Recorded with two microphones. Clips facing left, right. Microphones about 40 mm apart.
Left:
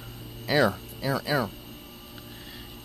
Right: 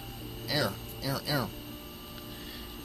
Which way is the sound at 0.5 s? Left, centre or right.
Left.